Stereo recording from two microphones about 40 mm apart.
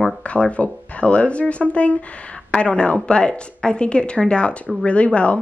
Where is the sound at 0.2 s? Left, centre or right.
Left.